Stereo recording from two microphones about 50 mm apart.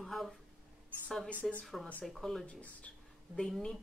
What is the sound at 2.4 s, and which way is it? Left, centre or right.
Speech, left.